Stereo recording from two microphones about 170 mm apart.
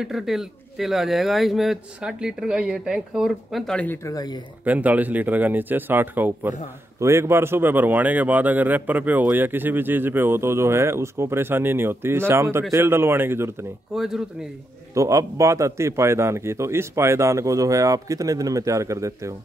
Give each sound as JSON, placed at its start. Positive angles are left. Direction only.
{"t": 0.0, "sound": "speech", "side_deg": 0}
{"t": 4.6, "sound": "speech", "side_deg": -10}
{"t": 13.9, "sound": "speech", "side_deg": -5}
{"t": 15.0, "sound": "speech", "side_deg": -20}